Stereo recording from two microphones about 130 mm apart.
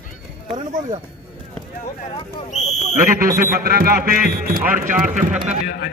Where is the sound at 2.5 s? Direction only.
65° left (ahead or behind).